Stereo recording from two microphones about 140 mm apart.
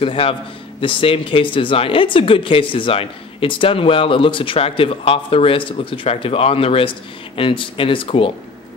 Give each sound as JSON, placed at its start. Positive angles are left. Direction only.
{"t": 0.0, "sound": "a man's voice", "side_deg": 40}